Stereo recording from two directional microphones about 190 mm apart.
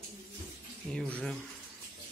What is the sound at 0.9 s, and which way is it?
Speech, 5° left (ahead or behind).